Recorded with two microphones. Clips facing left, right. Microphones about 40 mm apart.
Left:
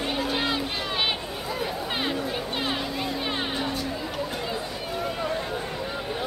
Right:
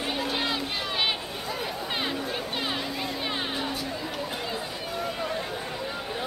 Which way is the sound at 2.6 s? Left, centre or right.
Centre.